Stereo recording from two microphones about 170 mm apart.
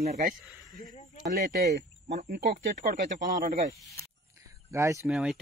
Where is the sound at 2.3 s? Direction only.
75° right (ahead or behind).